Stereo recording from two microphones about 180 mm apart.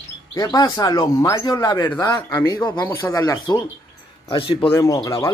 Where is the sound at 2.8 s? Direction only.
10° left (ahead or behind); by 4.7 s 30° left (ahead or behind).